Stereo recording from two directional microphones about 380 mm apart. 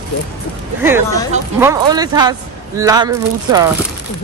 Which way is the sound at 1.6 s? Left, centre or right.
Centre.